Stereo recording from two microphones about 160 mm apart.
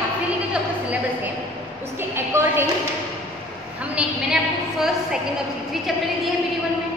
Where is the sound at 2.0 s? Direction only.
15° right (ahead or behind).